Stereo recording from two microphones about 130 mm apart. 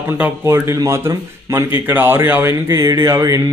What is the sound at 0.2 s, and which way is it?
Speech, 20° right (ahead or behind).